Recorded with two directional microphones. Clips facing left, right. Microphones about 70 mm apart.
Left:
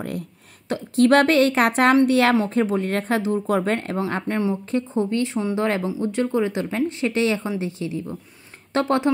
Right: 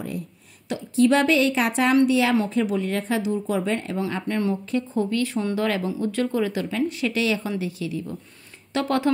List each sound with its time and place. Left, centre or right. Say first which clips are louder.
0.7 s speech: left 2 dB; left
2.3 s speech: left 2 dB; left
4.3 s speech: even; left